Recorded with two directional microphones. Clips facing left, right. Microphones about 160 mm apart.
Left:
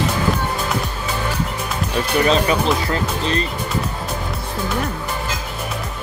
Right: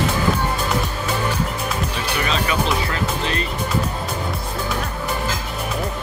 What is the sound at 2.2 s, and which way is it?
Speech, 35° left (ahead or behind).